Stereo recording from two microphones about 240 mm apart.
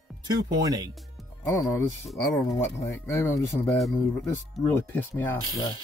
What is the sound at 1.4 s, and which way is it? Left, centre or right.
Speech, centre.